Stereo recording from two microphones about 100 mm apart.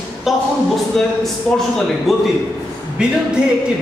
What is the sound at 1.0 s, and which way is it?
A man's voice, centre (ahead or behind).